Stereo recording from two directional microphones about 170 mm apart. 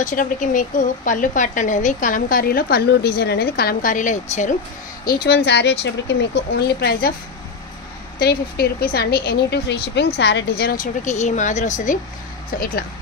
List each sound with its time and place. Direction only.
0.0 s a woman's voice: 50° left (ahead or behind)
5.0 s speech: 65° left (ahead or behind)
8.2 s speech: 65° left (ahead or behind)
11.1 s a woman's voice: 45° left (ahead or behind)